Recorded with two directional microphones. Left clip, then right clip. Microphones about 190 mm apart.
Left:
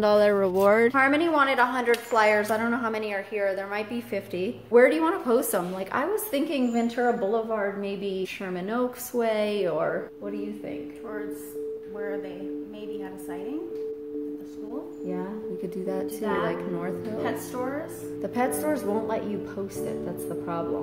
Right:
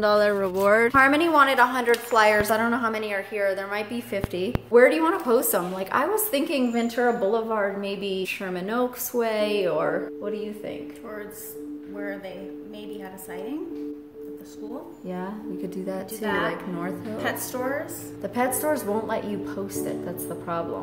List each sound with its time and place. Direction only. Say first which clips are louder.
0.0 s speech: even; 30° left (ahead or behind)
0.9 s a woman's voice: right 4 dB; 5° right (ahead or behind)
15.8 s a woman's voice: left 3 dB; 10° left (ahead or behind)
16.2 s a woman's voice: right 4 dB; 30° right (ahead or behind)
18.2 s a woman's voice: right 2 dB; 10° left (ahead or behind)
20.2 s a woman's voice: right 2 dB; 5° left (ahead or behind)